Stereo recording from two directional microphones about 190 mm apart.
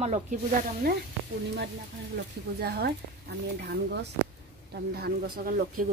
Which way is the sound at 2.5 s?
55° right (ahead or behind).